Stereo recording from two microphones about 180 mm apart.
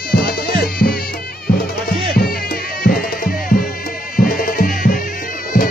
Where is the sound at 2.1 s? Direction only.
55° left (ahead or behind).